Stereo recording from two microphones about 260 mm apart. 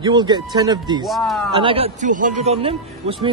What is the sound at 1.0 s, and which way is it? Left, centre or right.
Speech, centre.